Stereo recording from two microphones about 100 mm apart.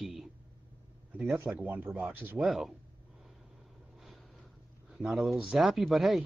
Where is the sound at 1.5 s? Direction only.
20° right (ahead or behind).